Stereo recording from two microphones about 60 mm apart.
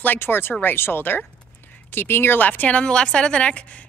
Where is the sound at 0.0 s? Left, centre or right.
Left.